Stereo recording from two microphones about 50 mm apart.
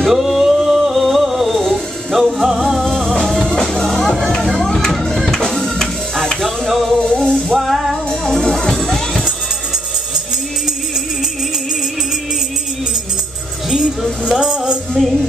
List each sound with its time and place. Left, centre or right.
0.0 s music: centre
6.4 s a sound: centre
7.0 s music: centre
7.5 s music: centre
8.1 s music: centre
13.7 s music: centre